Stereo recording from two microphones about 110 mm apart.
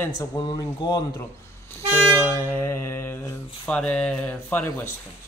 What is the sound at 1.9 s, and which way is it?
Music, 20° left (ahead or behind).